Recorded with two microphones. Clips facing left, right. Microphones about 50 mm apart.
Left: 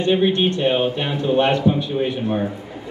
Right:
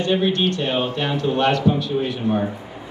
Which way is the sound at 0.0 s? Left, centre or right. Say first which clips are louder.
Left 2 dB; left.